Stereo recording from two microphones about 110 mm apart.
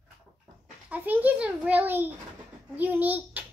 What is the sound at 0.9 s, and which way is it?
A child's voice, 15° right (ahead or behind).